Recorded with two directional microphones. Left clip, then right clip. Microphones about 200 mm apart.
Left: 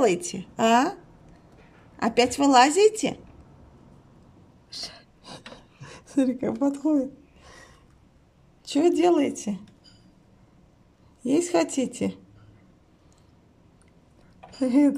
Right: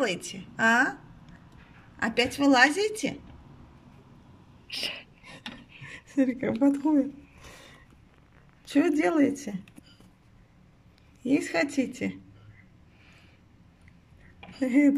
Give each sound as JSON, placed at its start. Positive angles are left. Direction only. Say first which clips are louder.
{"t": 0.0, "sound": "a woman's voice", "louder": "left 7 dB", "side_deg": 20}
{"t": 2.0, "sound": "a woman's voice", "louder": "left 4 dB", "side_deg": 10}
{"t": 4.6, "sound": "speech", "louder": "right 4 dB", "side_deg": -5}
{"t": 6.0, "sound": "a woman's voice", "louder": "left 2 dB", "side_deg": 10}
{"t": 8.6, "sound": "a woman's voice", "louder": "left 4 dB", "side_deg": 5}
{"t": 11.2, "sound": "a woman's voice", "louder": "left 4 dB", "side_deg": 10}
{"t": 14.6, "sound": "speech", "louder": "left 2 dB", "side_deg": 5}